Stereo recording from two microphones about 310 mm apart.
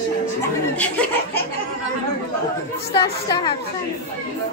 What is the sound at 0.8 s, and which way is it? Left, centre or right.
Speech, centre.